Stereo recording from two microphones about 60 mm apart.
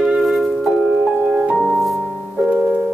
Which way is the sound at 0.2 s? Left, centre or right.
Centre.